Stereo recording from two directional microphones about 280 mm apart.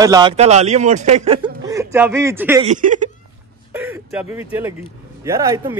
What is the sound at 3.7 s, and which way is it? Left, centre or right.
Speech, centre.